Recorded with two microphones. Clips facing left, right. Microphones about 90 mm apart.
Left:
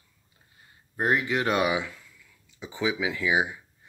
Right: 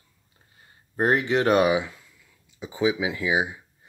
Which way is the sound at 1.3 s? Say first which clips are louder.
Right 5 dB; 30° right (ahead or behind).